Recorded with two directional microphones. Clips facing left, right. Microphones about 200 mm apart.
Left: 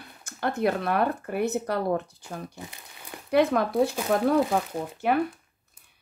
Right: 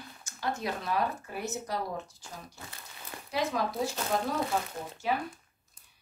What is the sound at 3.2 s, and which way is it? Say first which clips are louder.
Speech: left 9 dB; 60° left (ahead or behind).